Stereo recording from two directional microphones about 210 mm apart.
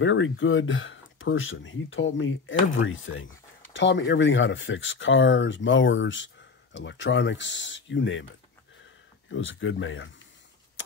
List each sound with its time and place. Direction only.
0.0 s speech: 65° left (ahead or behind)
9.3 s speech: 65° left (ahead or behind)